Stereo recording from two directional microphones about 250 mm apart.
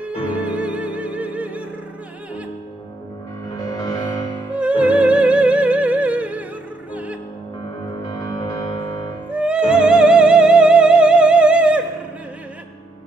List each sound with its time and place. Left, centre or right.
0.0 s music: centre
3.6 s music: centre
4.5 s music: centre
8.1 s music: centre
9.3 s music: centre